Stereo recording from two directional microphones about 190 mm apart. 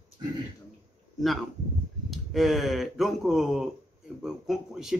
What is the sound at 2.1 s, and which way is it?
Speech, centre (ahead or behind).